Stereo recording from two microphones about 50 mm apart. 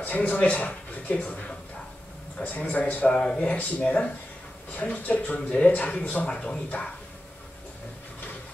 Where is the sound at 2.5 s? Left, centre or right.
Left.